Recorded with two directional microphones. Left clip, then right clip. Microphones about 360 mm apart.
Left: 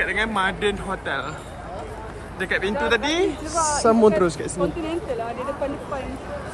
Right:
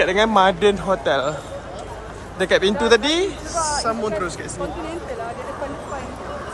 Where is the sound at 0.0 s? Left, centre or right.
Centre.